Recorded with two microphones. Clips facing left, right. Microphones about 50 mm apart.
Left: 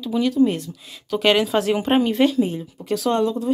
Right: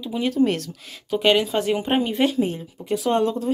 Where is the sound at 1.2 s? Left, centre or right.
Centre.